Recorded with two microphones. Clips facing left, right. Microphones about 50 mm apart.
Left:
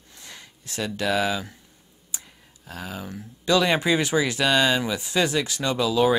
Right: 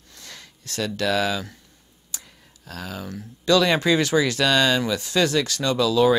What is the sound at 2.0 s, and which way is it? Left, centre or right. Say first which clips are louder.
Speech: even; left.